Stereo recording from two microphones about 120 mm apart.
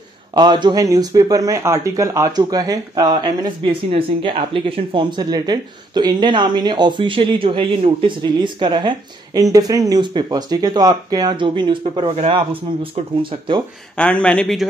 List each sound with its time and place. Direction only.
0.3 s speech: 40° right (ahead or behind)
13.9 s speech: 10° left (ahead or behind)